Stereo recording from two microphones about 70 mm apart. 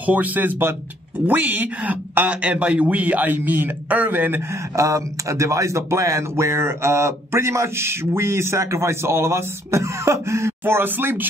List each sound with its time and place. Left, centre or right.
0.0 s speech: right
4.7 s speech: right
10.6 s speech: right